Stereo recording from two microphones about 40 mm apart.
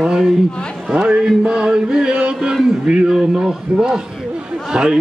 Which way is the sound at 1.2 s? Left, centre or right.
Centre.